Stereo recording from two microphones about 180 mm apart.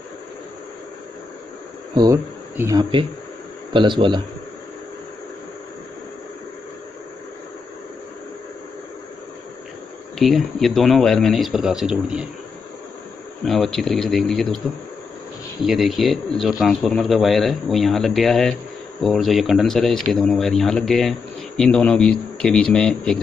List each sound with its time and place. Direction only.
2.5 s speech: 15° right (ahead or behind)
10.1 s speech: centre (ahead or behind)
13.5 s speech: centre (ahead or behind)
15.6 s speech: centre (ahead or behind)